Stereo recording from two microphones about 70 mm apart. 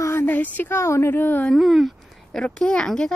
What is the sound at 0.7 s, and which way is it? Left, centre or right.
Speech, left.